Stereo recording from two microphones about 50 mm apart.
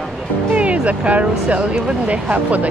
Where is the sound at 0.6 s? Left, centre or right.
Right.